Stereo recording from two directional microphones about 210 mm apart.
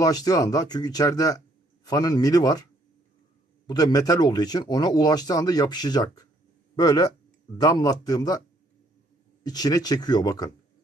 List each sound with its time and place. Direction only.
0.0 s speech: 15° left (ahead or behind)
3.6 s speech: 20° left (ahead or behind)
9.4 s speech: 20° left (ahead or behind)